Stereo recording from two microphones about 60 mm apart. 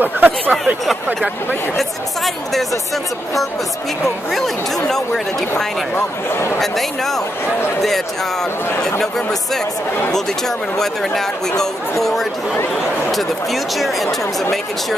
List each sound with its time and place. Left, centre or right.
0.0 s speech: right
1.8 s speech: centre
4.0 s speech: centre
6.3 s speech: left
6.6 s speech: centre
10.8 s speech: centre